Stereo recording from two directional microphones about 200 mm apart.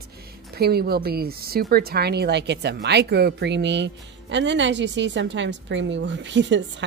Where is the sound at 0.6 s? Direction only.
50° right (ahead or behind).